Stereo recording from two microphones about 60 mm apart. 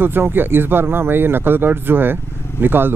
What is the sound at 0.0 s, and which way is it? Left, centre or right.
Speech, right.